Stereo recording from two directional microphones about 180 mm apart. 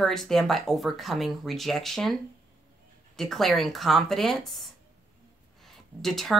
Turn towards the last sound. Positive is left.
turn(degrees=0)  # may be behind; listen again after turning